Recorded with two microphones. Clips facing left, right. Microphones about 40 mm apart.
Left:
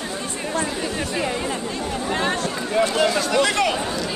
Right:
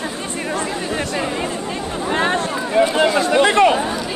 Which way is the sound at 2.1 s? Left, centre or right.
Right.